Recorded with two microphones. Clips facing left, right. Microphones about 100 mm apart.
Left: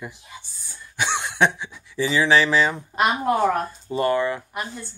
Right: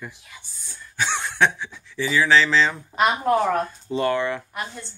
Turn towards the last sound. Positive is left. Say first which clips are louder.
# left 1 dB
turn(degrees=10)  # may be behind; listen again after turning